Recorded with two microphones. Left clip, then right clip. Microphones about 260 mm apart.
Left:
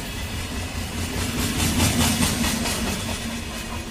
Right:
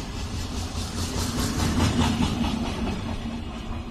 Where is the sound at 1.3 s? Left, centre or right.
Left.